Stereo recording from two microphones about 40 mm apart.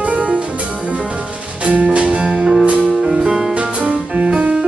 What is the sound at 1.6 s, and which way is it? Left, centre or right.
Music, right.